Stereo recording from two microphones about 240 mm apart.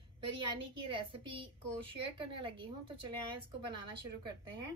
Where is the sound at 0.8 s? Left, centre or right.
Right.